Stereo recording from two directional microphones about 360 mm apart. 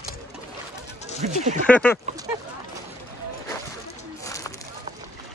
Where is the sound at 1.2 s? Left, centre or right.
Centre.